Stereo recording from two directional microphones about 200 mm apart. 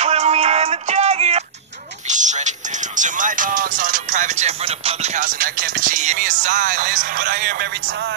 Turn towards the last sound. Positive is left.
turn(degrees=-45)  # may be behind; listen again after turning